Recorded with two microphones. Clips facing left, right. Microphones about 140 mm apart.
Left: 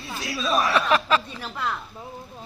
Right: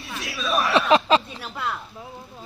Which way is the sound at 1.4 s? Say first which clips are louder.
Even; 5° right (ahead or behind).